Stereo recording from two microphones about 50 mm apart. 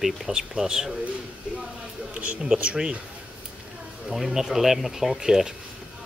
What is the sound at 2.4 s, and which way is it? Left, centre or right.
Speech, right.